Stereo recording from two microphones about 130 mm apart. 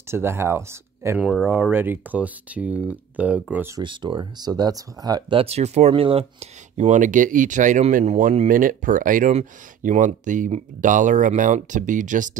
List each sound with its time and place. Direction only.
0.1 s speech: 20° right (ahead or behind)
1.2 s speech: 5° right (ahead or behind)
3.8 s speech: 40° right (ahead or behind)
5.4 s speech: 55° right (ahead or behind); by 12.3 s 80° right